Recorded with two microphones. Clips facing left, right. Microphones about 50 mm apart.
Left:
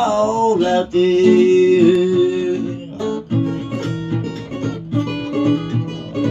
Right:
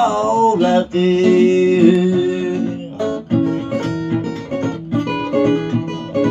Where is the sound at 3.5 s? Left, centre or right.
Right.